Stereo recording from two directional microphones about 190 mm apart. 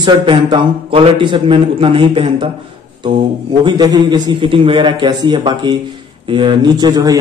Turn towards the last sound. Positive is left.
turn(degrees=-20)  # may be behind; listen again after turning